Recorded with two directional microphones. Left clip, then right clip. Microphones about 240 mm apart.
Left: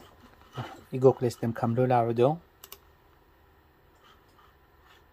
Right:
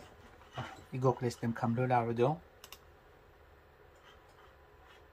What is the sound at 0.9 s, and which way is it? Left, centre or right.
Speech, left.